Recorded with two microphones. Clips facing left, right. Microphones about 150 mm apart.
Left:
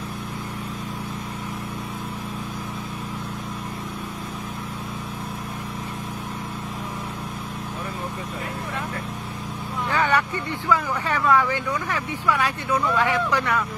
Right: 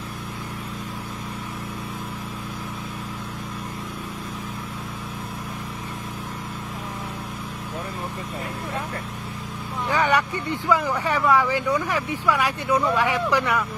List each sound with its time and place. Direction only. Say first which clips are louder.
9.8 s speech: right 1 dB; 15° right (ahead or behind)